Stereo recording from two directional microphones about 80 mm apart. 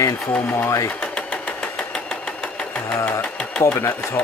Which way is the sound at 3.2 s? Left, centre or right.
Centre.